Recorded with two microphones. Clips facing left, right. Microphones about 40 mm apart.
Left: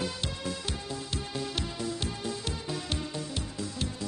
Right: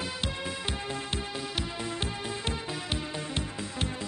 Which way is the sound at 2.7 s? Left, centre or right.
Centre.